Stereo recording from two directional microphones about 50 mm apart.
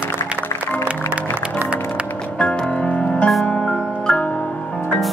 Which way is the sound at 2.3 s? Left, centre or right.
Left.